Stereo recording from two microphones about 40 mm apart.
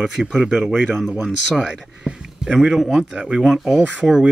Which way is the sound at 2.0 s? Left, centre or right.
Centre.